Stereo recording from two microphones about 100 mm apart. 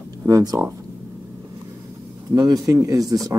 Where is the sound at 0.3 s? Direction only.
40° right (ahead or behind).